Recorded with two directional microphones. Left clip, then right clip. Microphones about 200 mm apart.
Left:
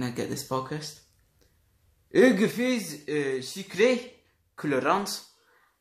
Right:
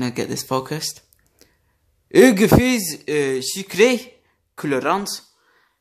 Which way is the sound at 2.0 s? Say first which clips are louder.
Right 8 dB; 45° right (ahead or behind).